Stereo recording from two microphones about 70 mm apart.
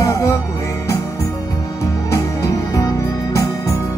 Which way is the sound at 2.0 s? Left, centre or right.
Left.